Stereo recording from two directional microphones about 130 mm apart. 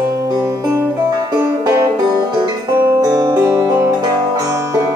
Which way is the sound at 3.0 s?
30° right (ahead or behind).